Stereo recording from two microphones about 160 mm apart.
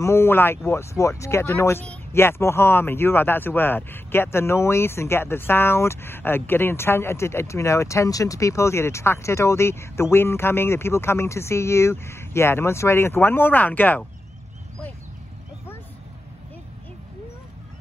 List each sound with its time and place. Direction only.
0.0 s speech: 15° left (ahead or behind)